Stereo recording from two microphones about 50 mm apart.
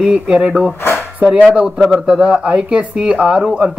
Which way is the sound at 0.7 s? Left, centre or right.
Left.